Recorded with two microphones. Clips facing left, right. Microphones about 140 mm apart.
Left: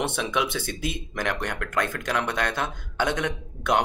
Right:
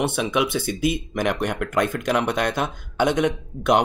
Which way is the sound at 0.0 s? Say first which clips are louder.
Right 4 dB; 10° right (ahead or behind).